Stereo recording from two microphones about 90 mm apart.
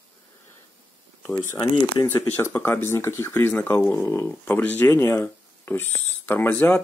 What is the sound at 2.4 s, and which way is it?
Speech, 30° left (ahead or behind).